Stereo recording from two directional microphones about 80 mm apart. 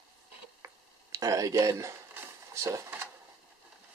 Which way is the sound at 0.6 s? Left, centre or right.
Right.